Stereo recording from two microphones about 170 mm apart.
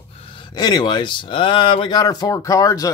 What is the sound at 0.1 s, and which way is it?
Speech, 35° left (ahead or behind).